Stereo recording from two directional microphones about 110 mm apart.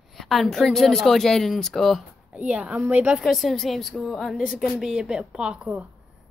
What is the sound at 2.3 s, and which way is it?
A woman's voice, 10° right (ahead or behind).